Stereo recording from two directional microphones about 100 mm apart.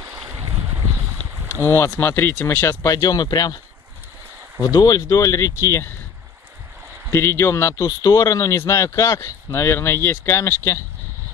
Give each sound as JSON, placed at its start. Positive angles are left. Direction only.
{"t": 0.1, "sound": "a sound", "side_deg": -30}
{"t": 1.6, "sound": "speech", "side_deg": 25}
{"t": 2.9, "sound": "speech", "side_deg": 40}
{"t": 4.6, "sound": "speech", "side_deg": 35}
{"t": 7.1, "sound": "speech", "side_deg": 30}
{"t": 7.8, "sound": "speech", "side_deg": 40}